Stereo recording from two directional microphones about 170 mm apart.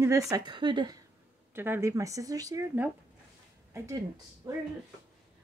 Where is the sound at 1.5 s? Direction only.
10° right (ahead or behind).